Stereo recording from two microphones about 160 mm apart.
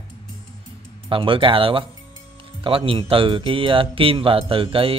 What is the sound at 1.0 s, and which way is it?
Speech, 30° right (ahead or behind).